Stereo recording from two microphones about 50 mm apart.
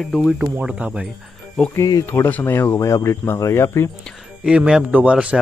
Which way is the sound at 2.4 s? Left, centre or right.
Left.